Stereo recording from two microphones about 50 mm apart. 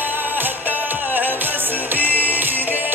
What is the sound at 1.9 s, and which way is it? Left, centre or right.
Music, right.